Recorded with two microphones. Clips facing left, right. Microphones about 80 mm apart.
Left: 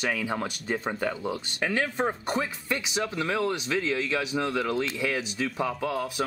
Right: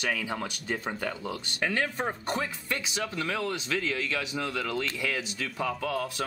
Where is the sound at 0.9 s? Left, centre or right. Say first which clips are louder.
Left 4 dB; centre.